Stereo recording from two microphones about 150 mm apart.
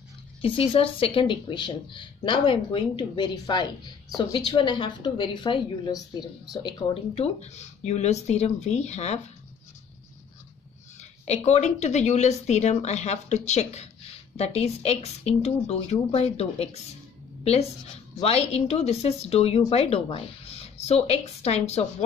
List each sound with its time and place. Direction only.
0.4 s speech: 40° left (ahead or behind)
6.9 s speech: 45° left (ahead or behind)
11.0 s speech: 50° left (ahead or behind)
18.2 s speech: 45° left (ahead or behind)